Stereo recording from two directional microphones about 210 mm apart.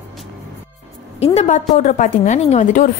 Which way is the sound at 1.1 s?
30° left (ahead or behind).